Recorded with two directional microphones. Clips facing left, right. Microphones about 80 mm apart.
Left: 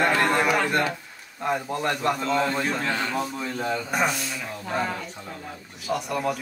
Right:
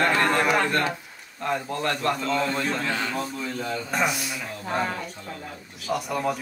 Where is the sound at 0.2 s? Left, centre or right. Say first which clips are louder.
Even; centre.